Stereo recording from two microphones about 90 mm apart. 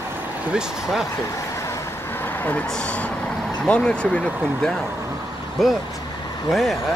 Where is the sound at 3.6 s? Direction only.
10° left (ahead or behind).